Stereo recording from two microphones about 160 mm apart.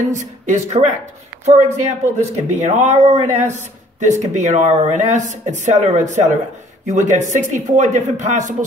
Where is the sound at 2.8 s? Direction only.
45° right (ahead or behind).